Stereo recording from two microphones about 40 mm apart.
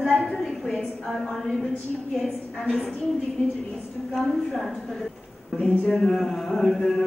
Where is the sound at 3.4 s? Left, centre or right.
Left.